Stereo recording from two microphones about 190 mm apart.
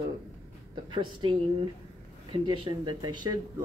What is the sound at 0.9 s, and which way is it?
Speech, 25° right (ahead or behind).